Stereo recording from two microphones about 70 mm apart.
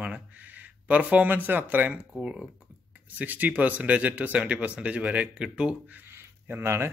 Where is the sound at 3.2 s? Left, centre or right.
Right.